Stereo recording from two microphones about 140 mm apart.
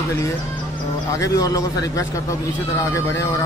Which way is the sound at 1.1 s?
20° left (ahead or behind).